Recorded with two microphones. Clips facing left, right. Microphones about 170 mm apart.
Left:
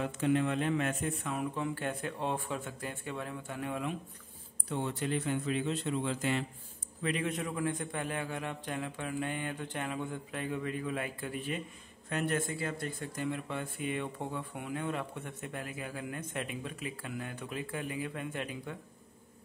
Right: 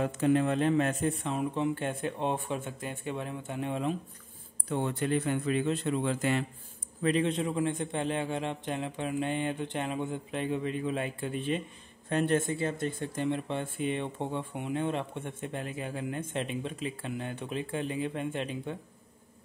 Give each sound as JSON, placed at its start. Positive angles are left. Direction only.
{"t": 0.0, "sound": "speech", "side_deg": -40}
{"t": 4.6, "sound": "a man's voice", "side_deg": -55}
{"t": 7.0, "sound": "speech", "side_deg": -35}